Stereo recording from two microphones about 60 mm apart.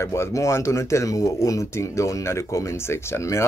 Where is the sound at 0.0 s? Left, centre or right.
Left.